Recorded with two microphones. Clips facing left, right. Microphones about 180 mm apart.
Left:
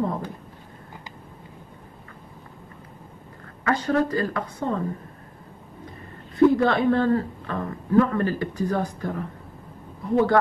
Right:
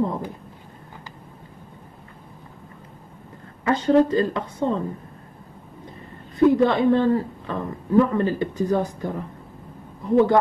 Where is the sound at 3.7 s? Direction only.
20° right (ahead or behind).